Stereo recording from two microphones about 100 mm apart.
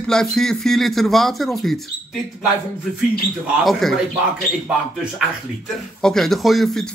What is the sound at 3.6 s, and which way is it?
Speech, centre (ahead or behind).